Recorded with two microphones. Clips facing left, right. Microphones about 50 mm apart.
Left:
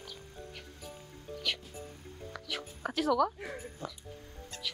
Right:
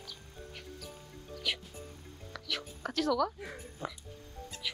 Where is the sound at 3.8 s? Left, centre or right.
Centre.